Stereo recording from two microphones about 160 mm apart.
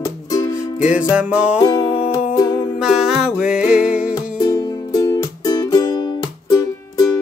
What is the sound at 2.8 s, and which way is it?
Music, 5° right (ahead or behind).